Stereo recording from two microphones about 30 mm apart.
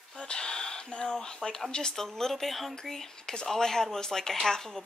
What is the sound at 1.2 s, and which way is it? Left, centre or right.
Speech, left.